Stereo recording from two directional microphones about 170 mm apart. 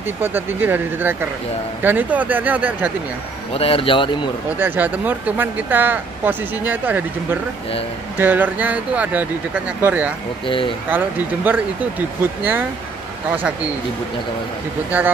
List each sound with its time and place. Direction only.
0.2 s speech: 10° right (ahead or behind)
3.5 s a man's voice: 35° left (ahead or behind)
4.6 s speech: 10° right (ahead or behind)
8.2 s speech: 10° right (ahead or behind)
10.4 s a man's voice: 30° left (ahead or behind)
10.9 s speech: 10° right (ahead or behind)